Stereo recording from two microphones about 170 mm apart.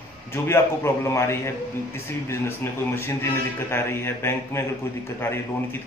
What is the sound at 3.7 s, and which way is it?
Speech, 15° left (ahead or behind).